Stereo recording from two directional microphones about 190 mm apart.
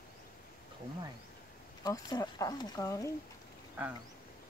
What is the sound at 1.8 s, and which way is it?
Speech, 20° left (ahead or behind).